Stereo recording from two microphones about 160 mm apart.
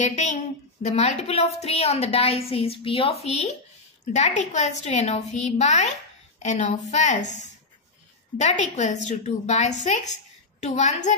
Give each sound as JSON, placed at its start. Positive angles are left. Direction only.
{"t": 0.0, "sound": "a woman's voice", "side_deg": 45}